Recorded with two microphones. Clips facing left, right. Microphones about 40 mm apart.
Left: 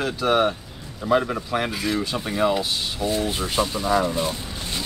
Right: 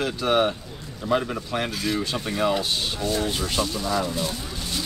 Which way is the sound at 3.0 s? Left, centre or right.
Centre.